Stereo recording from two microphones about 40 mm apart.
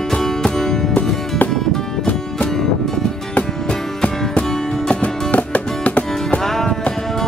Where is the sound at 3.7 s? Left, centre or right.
Left.